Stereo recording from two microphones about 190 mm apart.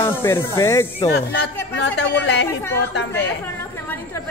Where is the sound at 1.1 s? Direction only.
60° left (ahead or behind).